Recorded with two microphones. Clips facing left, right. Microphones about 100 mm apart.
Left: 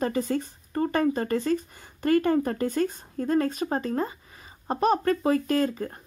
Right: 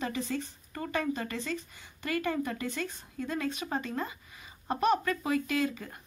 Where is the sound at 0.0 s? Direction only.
45° left (ahead or behind).